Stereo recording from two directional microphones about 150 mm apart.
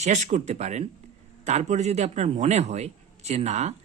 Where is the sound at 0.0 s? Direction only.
50° right (ahead or behind).